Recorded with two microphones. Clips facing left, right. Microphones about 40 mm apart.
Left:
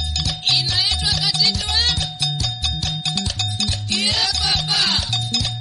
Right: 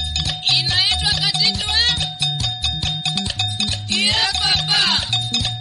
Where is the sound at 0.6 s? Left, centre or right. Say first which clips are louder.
Right 2 dB; right.